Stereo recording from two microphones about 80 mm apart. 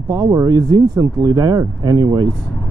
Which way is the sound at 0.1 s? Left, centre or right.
Right.